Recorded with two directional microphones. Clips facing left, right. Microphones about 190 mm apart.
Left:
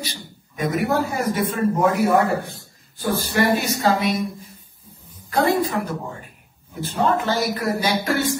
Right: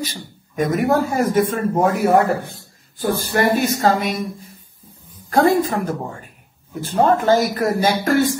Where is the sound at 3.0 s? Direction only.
45° right (ahead or behind).